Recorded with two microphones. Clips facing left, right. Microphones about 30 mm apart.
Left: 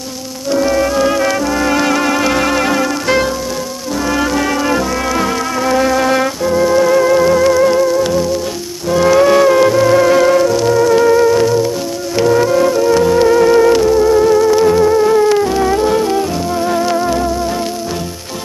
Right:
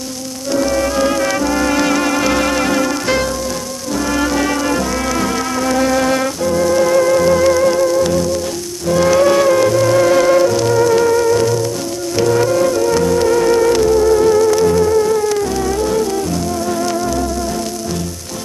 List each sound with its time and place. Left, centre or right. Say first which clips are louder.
0.5 s music: left 3 dB; centre